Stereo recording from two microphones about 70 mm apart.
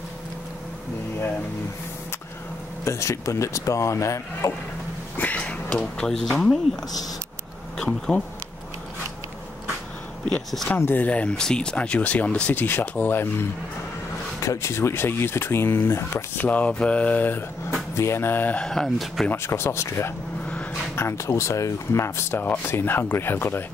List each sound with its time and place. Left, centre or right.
2.8 s speech: left
5.1 s speech: left
10.8 s speech: left
11.1 s speech: centre; by 13.5 s left
14.4 s speech: left
16.4 s speech: left
17.9 s speech: left
18.6 s speech: centre
19.3 s speech: left
20.4 s a sound: centre
20.9 s speech: left